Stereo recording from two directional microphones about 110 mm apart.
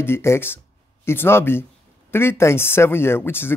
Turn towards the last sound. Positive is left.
turn(degrees=20)  # may be behind; listen again after turning